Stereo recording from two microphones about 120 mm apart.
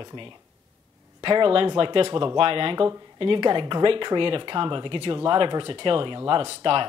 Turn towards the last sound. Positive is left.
turn(degrees=-50)  # may be behind; listen again after turning